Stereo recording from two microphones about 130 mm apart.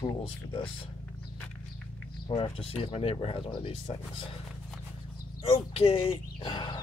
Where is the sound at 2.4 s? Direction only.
40° left (ahead or behind).